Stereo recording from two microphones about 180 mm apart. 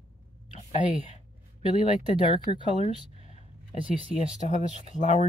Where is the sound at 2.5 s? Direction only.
25° left (ahead or behind).